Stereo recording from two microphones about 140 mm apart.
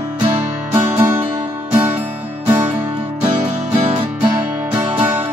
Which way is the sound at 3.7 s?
45° right (ahead or behind).